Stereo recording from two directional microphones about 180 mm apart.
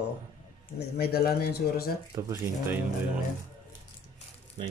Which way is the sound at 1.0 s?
60° left (ahead or behind).